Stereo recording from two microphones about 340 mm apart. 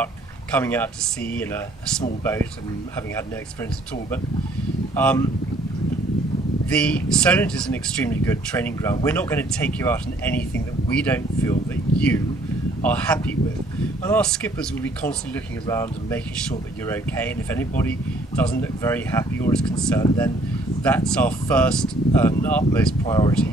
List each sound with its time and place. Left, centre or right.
0.0 s a sound: centre
1.3 s speech: centre
4.9 s speech: centre
6.7 s speech: centre